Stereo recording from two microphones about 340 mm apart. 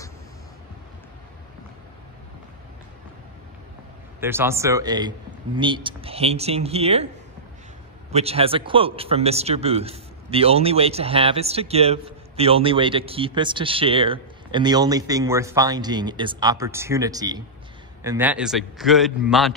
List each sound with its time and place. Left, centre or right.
4.2 s speech: centre
8.1 s a man's voice: centre